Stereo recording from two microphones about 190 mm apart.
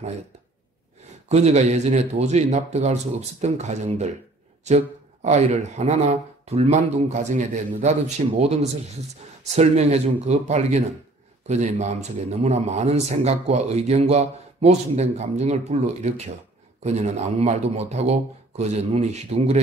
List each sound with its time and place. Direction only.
1.3 s a man's voice: 35° right (ahead or behind)